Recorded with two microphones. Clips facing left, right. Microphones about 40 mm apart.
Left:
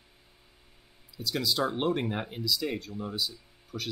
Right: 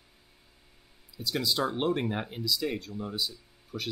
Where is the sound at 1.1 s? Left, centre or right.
Centre.